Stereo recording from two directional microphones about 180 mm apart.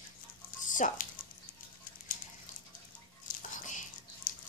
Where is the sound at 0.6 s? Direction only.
45° left (ahead or behind).